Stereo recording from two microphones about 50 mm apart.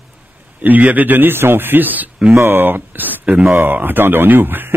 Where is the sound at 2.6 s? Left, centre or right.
Right.